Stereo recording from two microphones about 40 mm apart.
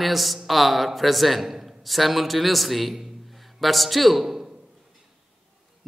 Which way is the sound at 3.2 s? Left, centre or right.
Centre.